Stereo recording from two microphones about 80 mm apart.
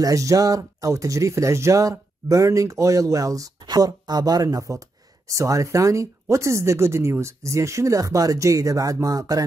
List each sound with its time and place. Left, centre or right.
0.0 s speech: right
3.6 s speech: right